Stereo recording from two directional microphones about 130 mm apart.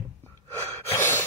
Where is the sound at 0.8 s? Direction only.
15° left (ahead or behind).